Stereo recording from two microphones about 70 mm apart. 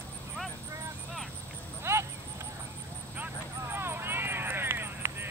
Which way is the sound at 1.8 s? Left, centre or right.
Right.